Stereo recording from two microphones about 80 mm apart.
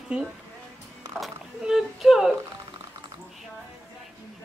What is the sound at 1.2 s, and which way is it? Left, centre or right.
Splash, centre.